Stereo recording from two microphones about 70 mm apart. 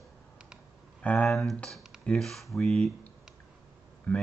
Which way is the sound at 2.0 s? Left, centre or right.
Centre.